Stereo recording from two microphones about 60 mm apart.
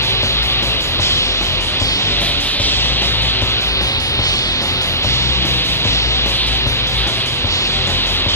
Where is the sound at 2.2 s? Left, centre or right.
Left.